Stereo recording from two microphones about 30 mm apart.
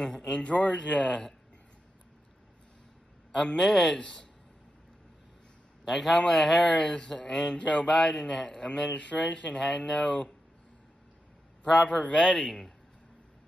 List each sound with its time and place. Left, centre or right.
0.2 s speech: left
3.6 s speech: centre
3.9 s speech: left
5.9 s a man's voice: centre
6.6 s speech: left
11.6 s a man's voice: left
11.9 s a man's voice: left
12.2 s speech: left